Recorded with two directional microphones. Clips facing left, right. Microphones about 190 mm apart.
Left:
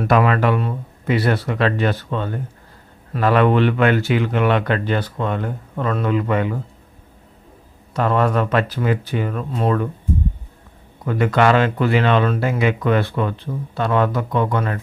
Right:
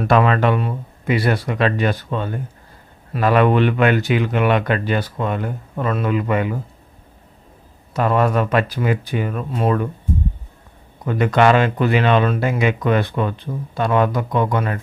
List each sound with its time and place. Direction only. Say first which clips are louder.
0.1 s speech: right 1 dB; 25° right (ahead or behind)
7.9 s speech: right 1 dB; 10° right (ahead or behind)
11.1 s speech: right 1 dB; 20° right (ahead or behind)